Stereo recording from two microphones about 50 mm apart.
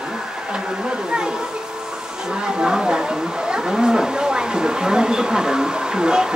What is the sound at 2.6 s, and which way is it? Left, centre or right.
Speech, centre.